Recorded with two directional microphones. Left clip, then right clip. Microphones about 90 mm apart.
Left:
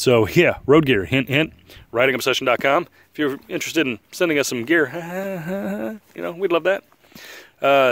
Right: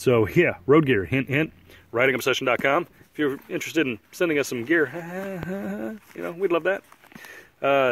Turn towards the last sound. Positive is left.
turn(degrees=30)  # may be behind; listen again after turning